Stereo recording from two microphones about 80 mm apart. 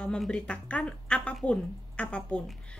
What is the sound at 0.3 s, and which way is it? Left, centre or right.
Speech, centre.